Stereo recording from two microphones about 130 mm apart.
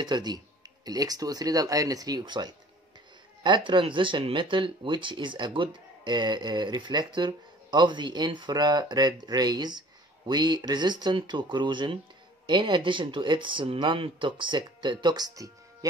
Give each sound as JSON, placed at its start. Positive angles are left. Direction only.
{"t": 0.0, "sound": "speech", "side_deg": -35}